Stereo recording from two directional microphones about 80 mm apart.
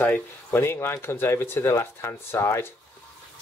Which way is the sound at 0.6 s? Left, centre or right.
Left.